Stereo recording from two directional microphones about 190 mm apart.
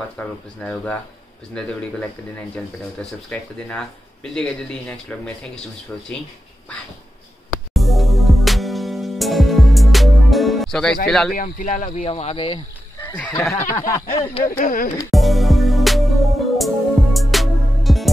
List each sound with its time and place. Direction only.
0.2 s speech: 5° left (ahead or behind)
7.7 s music: centre (ahead or behind)
11.1 s speech: centre (ahead or behind)
11.3 s speech: 45° left (ahead or behind)
12.1 s speech: 30° left (ahead or behind)
13.2 s speech: 15° left (ahead or behind)
14.4 s speech: 45° left (ahead or behind)
15.0 s music: centre (ahead or behind)